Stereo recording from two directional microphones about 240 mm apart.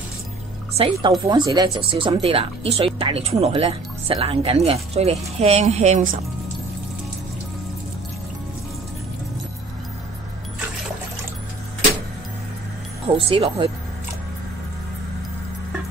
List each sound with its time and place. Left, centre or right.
0.7 s speech: right
13.1 s speech: right